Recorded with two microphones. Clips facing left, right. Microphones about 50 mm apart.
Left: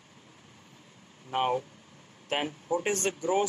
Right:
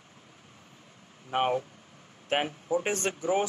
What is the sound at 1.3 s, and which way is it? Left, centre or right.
Speech, right.